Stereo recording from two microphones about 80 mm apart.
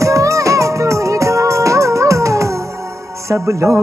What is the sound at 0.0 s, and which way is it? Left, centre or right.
Music, right.